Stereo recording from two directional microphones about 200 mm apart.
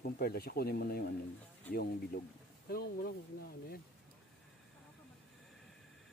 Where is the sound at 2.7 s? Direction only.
50° left (ahead or behind).